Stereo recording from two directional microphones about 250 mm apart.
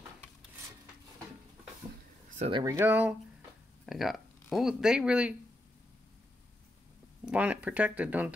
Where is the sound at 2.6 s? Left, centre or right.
Centre.